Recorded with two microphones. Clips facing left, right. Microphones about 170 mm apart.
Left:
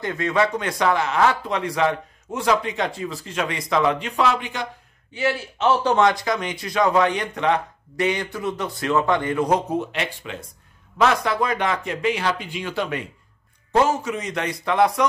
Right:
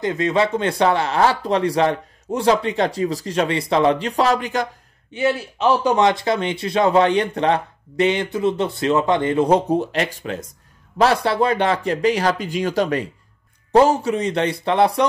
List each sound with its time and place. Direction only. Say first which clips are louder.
0.0 s speech: right 3 dB; 20° right (ahead or behind); by 4.6 s 40° right (ahead or behind)
5.1 s speech: right 4 dB; 20° right (ahead or behind)